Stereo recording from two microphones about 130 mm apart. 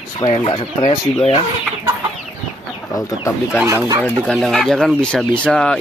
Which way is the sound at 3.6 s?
25° right (ahead or behind).